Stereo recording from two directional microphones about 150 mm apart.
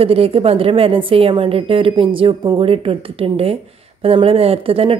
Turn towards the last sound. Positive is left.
turn(degrees=-40)  # may be behind; listen again after turning